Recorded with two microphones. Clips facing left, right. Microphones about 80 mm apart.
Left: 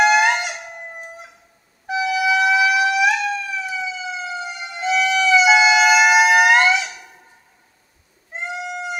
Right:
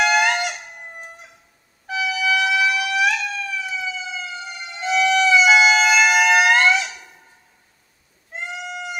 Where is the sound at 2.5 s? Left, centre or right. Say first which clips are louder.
Left 4 dB; centre.